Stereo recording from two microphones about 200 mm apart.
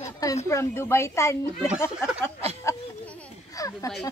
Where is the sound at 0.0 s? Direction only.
15° left (ahead or behind).